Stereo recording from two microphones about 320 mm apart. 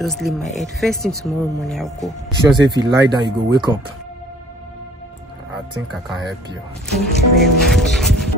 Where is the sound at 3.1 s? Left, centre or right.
Centre.